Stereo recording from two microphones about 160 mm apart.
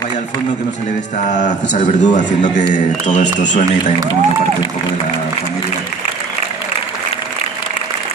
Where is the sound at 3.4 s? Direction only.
50° left (ahead or behind).